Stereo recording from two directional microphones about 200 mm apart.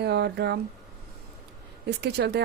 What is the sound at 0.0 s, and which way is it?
Speech, 55° right (ahead or behind).